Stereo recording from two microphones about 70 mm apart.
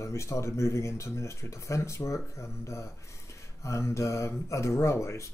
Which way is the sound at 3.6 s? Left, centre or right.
Left.